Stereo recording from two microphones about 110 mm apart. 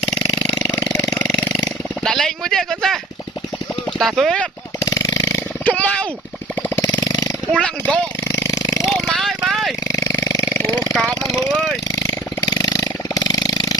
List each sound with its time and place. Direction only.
2.0 s a sound: 5° left (ahead or behind)
4.0 s speech: centre (ahead or behind)
4.8 s chainsaw: 30° left (ahead or behind)
5.7 s a sound: 10° left (ahead or behind)
6.7 s chainsaw: 30° left (ahead or behind)
7.5 s speech: 10° left (ahead or behind)
8.2 s a sound: 25° left (ahead or behind)
8.8 s vehicle: centre (ahead or behind)
9.8 s burping: 30° left (ahead or behind)
10.5 s a sound: 30° left (ahead or behind)
10.9 s jackhammer: 5° left (ahead or behind)
12.4 s mechanisms: 35° left (ahead or behind)